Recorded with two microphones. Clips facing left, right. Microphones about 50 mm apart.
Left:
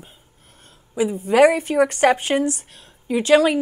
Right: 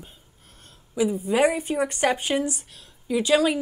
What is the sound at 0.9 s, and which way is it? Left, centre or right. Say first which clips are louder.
Speech: left 2 dB; left.